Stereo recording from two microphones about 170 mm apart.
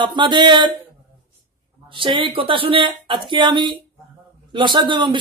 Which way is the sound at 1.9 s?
30° right (ahead or behind).